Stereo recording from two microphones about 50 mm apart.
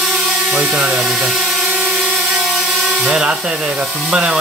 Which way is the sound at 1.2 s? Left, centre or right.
Centre.